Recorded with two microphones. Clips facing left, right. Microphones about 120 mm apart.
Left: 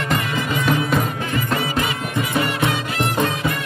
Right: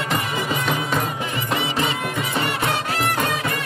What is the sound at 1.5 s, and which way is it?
Music, 25° right (ahead or behind).